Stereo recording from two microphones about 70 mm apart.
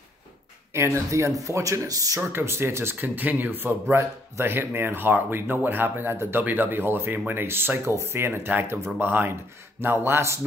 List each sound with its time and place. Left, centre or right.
0.7 s speech: right
2.3 s speech: right